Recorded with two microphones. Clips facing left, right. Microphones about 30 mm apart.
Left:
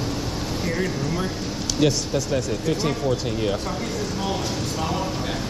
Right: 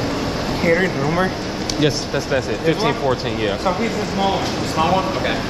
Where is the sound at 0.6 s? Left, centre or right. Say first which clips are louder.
Right 10 dB; right.